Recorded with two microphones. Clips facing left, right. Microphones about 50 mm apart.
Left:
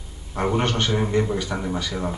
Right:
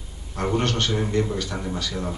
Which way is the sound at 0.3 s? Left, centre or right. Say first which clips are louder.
Left 1 dB; centre.